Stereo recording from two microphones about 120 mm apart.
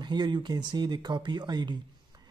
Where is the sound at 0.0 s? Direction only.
40° right (ahead or behind).